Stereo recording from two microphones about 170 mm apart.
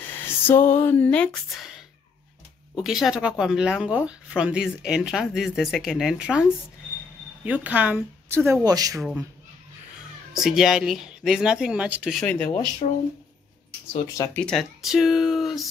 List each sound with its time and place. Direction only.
0.5 s a sound: 15° left (ahead or behind)
2.7 s speech: centre (ahead or behind)
7.4 s a woman's voice: 10° right (ahead or behind)
8.6 s speech: 20° right (ahead or behind)
10.3 s speech: centre (ahead or behind)
12.2 s a sound: 10° left (ahead or behind)
12.8 s speech: 45° left (ahead or behind)
14.0 s speech: 20° left (ahead or behind)
14.4 s speech: centre (ahead or behind)